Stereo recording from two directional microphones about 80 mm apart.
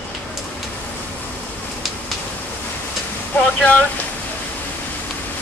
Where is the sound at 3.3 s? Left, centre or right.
Centre.